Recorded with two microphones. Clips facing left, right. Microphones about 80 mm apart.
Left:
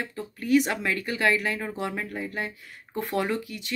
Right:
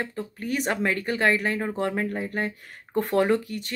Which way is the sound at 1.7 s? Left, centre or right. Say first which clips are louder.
Right 4 dB; right.